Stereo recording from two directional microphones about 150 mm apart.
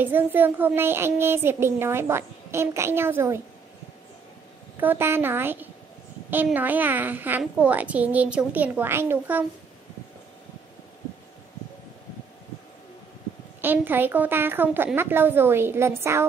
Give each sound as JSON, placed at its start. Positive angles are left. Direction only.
{"t": 0.0, "sound": "speech", "side_deg": -15}
{"t": 4.7, "sound": "speech", "side_deg": -15}
{"t": 13.6, "sound": "speech", "side_deg": -15}